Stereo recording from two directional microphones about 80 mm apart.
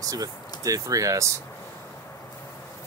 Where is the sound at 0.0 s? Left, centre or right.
Right.